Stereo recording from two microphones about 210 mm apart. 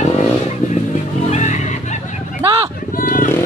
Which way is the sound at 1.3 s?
35° left (ahead or behind).